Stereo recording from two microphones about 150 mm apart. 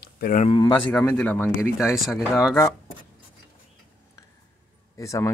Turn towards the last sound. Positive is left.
turn(degrees=20)  # may be behind; listen again after turning